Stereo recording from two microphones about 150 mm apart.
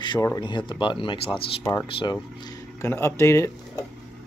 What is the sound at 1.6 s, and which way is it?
Speech, 15° left (ahead or behind).